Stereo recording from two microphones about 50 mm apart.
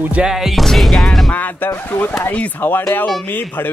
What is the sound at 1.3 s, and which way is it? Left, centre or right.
Speech, left.